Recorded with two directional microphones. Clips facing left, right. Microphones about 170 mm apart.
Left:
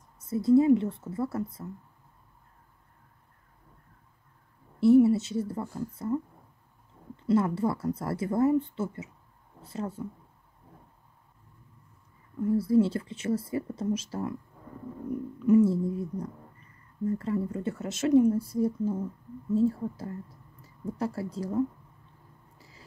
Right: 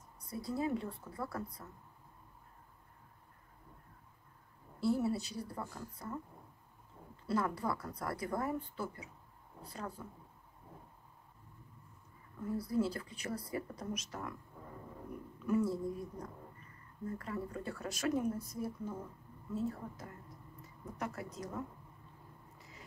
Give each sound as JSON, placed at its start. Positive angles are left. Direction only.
{"t": 0.2, "sound": "a woman's voice", "side_deg": 25}
{"t": 4.7, "sound": "a woman's voice", "side_deg": 25}
{"t": 7.2, "sound": "a woman's voice", "side_deg": 25}
{"t": 12.5, "sound": "a woman's voice", "side_deg": 25}
{"t": 15.4, "sound": "a woman's voice", "side_deg": 25}
{"t": 22.6, "sound": "a sound", "side_deg": 30}